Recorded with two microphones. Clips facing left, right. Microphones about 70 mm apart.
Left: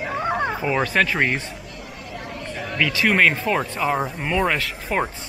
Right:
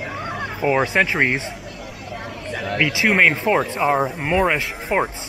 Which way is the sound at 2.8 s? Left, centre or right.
Centre.